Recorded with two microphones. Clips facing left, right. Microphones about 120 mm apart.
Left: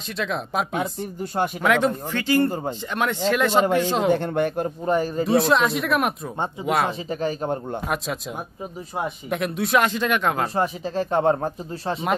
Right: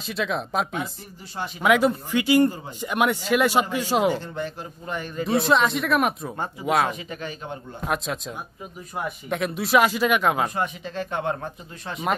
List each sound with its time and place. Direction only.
0.2 s speech: centre (ahead or behind)
4.1 s speech: 60° left (ahead or behind)
4.8 s speech: 40° left (ahead or behind)
5.2 s speech: centre (ahead or behind)
6.9 s speech: 35° left (ahead or behind)
7.8 s speech: centre (ahead or behind)
9.3 s speech: centre (ahead or behind)
10.5 s speech: 35° left (ahead or behind)